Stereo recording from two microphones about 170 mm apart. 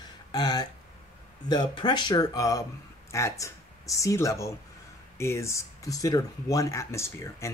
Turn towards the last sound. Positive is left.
turn(degrees=15)  # may be behind; listen again after turning